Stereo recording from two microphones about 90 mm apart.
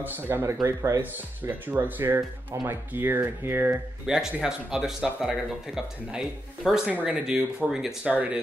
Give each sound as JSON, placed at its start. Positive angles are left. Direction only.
{"t": 0.0, "sound": "speech", "side_deg": -25}
{"t": 4.0, "sound": "speech", "side_deg": -5}